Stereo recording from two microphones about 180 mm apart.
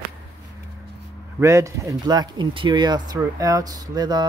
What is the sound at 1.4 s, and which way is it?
Speech, 15° right (ahead or behind).